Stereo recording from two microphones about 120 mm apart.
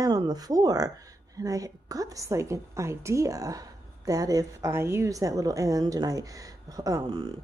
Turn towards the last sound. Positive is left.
turn(degrees=-30)  # may be behind; listen again after turning